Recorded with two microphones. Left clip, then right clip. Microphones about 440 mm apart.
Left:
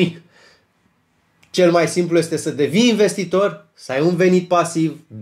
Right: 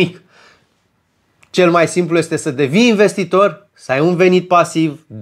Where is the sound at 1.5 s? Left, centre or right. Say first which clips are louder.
Right 3 dB; right.